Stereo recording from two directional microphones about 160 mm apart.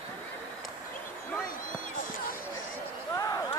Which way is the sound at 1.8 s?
60° left (ahead or behind).